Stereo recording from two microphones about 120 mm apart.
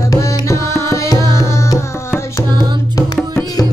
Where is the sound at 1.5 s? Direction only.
25° left (ahead or behind).